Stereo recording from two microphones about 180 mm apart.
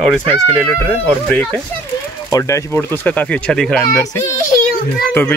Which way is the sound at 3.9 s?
15° left (ahead or behind).